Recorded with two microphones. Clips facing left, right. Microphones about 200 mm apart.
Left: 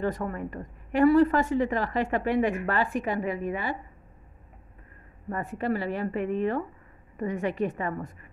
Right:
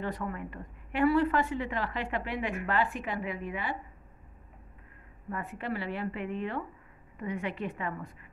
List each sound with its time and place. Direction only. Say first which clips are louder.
0.0 s a woman's voice: left 6 dB; 45° left (ahead or behind)
5.3 s a woman's voice: left 6 dB; 40° left (ahead or behind)